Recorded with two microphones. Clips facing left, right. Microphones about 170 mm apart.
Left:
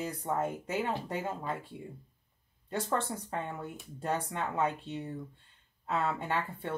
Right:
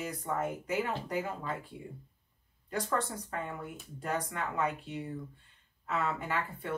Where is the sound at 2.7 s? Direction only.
25° left (ahead or behind).